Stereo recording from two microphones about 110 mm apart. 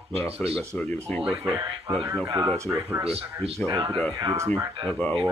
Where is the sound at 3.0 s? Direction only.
65° right (ahead or behind).